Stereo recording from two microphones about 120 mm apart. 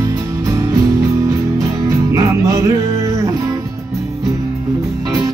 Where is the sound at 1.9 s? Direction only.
25° right (ahead or behind).